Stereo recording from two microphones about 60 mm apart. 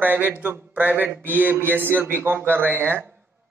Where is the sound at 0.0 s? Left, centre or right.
Right.